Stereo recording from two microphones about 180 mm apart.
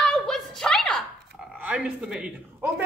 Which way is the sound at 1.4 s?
5° right (ahead or behind).